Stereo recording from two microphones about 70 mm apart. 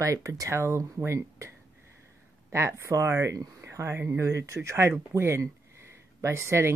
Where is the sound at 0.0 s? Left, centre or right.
Right.